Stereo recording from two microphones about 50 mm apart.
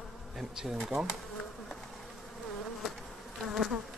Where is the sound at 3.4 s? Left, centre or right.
Centre.